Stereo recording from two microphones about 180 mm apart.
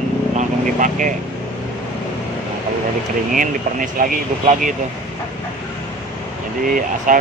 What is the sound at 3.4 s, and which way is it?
Speech, 50° right (ahead or behind).